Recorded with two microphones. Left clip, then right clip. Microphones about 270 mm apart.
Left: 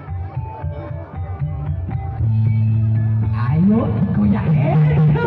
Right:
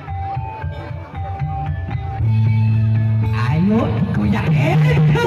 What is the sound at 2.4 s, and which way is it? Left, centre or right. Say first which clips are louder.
Music: right 2 dB; right.